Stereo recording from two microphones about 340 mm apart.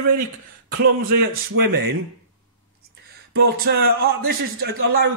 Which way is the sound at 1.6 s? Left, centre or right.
Right.